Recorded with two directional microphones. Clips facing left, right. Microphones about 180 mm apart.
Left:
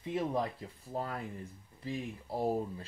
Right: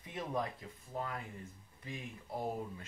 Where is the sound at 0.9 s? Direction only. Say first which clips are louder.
Left 4 dB; 35° left (ahead or behind).